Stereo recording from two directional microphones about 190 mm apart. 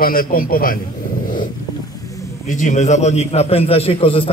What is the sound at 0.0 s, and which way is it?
Speech, 50° left (ahead or behind).